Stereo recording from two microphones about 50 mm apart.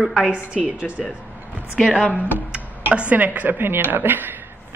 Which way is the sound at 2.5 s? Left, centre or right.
Right.